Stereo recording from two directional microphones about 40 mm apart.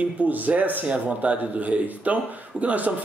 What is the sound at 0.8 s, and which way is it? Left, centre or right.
A man's voice, right.